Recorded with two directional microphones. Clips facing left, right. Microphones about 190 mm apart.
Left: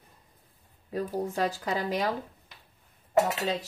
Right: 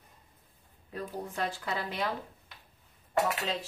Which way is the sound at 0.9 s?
40° left (ahead or behind).